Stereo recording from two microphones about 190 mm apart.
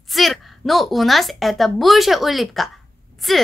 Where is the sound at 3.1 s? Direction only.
Centre (ahead or behind).